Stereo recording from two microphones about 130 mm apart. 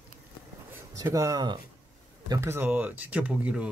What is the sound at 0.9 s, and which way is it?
Speech, 25° right (ahead or behind).